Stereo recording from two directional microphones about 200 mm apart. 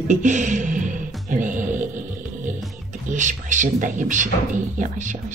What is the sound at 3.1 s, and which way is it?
Speech, 40° right (ahead or behind).